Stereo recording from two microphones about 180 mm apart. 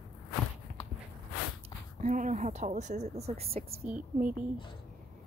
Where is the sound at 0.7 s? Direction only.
45° right (ahead or behind).